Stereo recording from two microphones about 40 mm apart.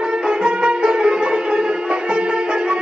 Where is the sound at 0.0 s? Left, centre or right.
Right.